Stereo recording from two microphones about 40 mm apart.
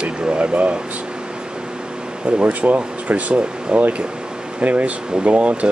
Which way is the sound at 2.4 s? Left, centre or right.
Right.